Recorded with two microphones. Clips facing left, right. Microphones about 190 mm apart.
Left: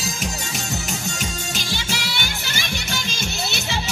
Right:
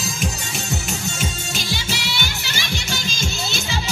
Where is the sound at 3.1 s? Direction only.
65° left (ahead or behind).